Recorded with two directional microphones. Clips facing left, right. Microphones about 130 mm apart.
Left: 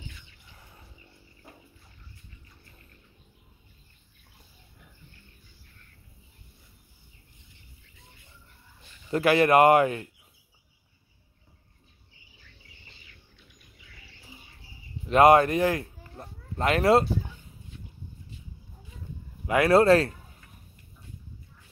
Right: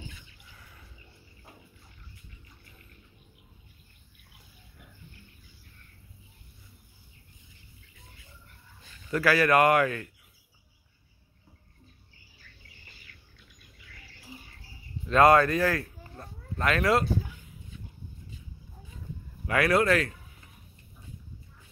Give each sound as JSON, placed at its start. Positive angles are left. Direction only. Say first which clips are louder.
{"t": 9.1, "sound": "speech", "louder": "left 3 dB", "side_deg": 25}
{"t": 15.0, "sound": "speech", "louder": "left 2 dB", "side_deg": 20}
{"t": 19.4, "sound": "speech", "louder": "left 5 dB", "side_deg": 20}